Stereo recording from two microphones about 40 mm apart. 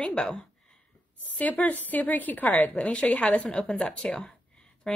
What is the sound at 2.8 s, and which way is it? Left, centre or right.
Speech, left.